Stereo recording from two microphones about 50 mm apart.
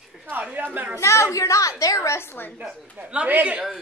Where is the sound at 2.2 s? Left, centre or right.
Left.